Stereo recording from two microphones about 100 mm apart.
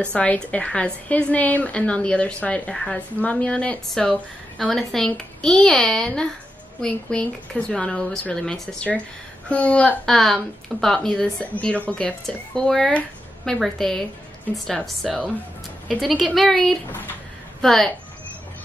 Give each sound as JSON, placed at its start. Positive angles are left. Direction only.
{"t": 0.1, "sound": "a woman's voice", "side_deg": 15}
{"t": 10.1, "sound": "a woman's voice", "side_deg": 5}